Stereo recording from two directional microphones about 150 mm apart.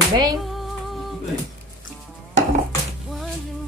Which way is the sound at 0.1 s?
25° right (ahead or behind).